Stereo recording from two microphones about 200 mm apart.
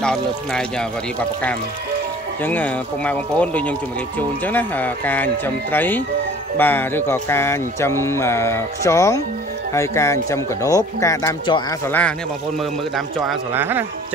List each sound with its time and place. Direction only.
0.0 s speech: 5° left (ahead or behind)
2.4 s speech: 10° left (ahead or behind)
12.9 s speech: 5° right (ahead or behind)